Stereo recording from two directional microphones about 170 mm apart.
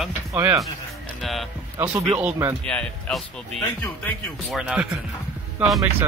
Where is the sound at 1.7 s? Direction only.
15° right (ahead or behind).